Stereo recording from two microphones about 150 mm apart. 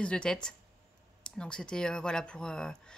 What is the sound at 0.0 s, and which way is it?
Speech, 5° left (ahead or behind).